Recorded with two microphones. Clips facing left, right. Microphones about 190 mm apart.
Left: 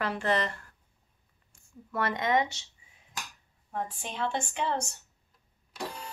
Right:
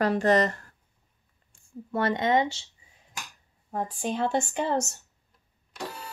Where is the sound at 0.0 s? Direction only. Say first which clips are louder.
Right 7 dB; 40° right (ahead or behind).